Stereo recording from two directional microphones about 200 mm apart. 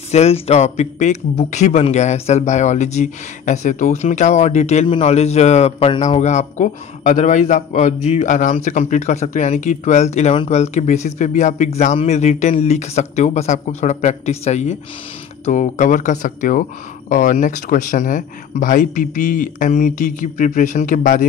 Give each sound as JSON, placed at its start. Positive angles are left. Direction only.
{"t": 0.1, "sound": "speech", "side_deg": 30}